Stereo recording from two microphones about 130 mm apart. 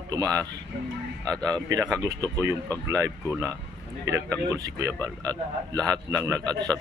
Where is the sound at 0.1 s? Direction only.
25° right (ahead or behind).